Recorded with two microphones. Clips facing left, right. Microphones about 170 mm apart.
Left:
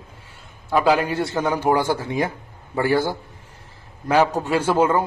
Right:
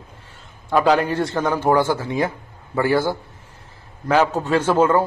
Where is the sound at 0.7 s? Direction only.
10° left (ahead or behind).